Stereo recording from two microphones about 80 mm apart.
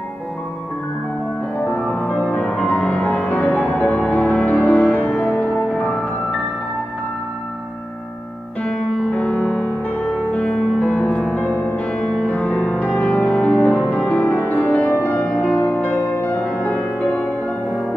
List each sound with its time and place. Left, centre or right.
1.7 s music: centre
8.6 s music: centre
16.4 s music: centre